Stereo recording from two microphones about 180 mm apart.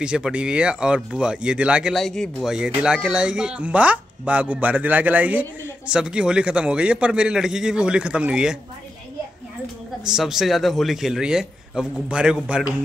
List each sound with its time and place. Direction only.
0.0 s a man's voice: 5° right (ahead or behind)
10.0 s speech: 5° right (ahead or behind)